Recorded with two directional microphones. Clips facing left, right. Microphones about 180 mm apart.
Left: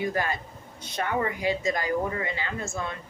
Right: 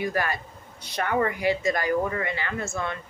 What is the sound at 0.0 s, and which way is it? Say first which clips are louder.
Speech: right 1 dB; 20° left (ahead or behind).